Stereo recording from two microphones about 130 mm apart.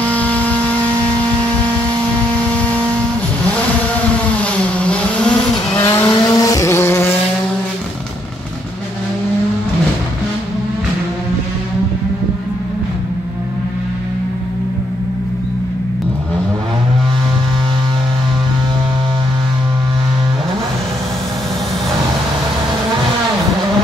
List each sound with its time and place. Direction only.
0.0 s a sound: 10° left (ahead or behind)
2.5 s vehicle: 10° left (ahead or behind)
4.4 s vehicle: 10° left (ahead or behind)
6.2 s vehicle: 30° left (ahead or behind)